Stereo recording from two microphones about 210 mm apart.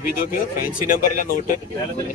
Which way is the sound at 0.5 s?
40° left (ahead or behind).